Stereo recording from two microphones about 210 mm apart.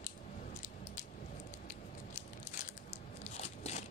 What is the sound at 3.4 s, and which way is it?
Biting, 30° left (ahead or behind).